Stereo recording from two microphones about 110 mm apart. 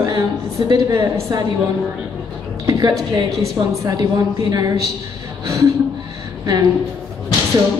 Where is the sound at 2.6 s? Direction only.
35° right (ahead or behind).